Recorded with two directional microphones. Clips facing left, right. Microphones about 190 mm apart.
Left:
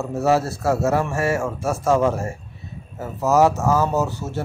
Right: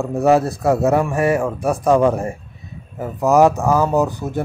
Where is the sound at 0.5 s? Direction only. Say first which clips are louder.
Right 4 dB; 15° right (ahead or behind).